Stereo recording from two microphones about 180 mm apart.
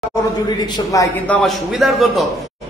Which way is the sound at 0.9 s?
20° left (ahead or behind).